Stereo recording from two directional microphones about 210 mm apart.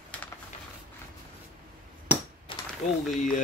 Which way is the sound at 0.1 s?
5° left (ahead or behind).